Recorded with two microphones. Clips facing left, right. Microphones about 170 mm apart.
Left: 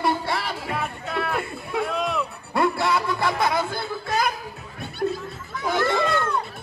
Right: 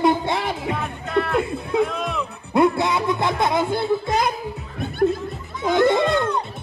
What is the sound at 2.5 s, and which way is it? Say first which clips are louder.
Speech: right 4 dB; 20° right (ahead or behind).